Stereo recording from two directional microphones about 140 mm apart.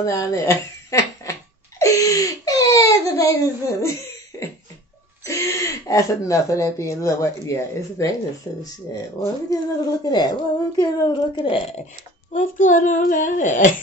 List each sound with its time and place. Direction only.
0.0 s speech: 25° left (ahead or behind)
1.8 s a sound: 25° left (ahead or behind)
5.2 s a woman's voice: 20° left (ahead or behind); by 11.8 s 45° left (ahead or behind)
12.3 s speech: 65° left (ahead or behind)